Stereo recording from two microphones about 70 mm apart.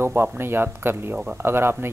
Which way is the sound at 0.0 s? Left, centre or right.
Right.